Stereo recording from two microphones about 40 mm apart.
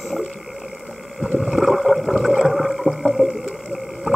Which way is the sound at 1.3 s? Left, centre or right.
Centre.